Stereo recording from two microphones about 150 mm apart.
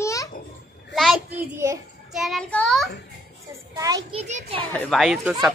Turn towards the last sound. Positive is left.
turn(degrees=0)  # may be behind; listen again after turning